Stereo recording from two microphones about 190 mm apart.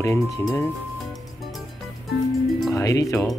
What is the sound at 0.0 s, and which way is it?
Speech, 15° left (ahead or behind).